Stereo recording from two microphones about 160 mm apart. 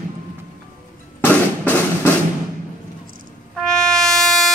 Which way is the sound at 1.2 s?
10° left (ahead or behind).